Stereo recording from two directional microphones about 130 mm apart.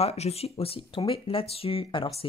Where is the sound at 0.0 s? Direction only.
50° left (ahead or behind).